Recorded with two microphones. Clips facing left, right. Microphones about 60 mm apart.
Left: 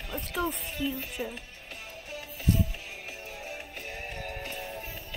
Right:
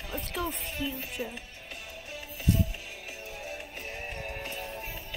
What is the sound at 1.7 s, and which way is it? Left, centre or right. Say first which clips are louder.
Music: left 1 dB; left.